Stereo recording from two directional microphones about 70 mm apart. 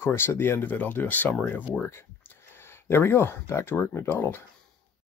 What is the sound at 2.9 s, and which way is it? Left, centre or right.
Speech, left.